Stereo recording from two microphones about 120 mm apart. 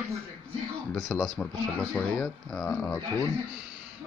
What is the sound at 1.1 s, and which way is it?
Speech, centre (ahead or behind).